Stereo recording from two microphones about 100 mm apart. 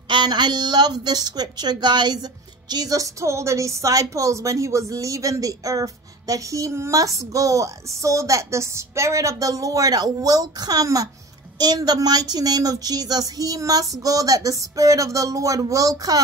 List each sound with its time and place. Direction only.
0.1 s a woman's voice: 45° right (ahead or behind)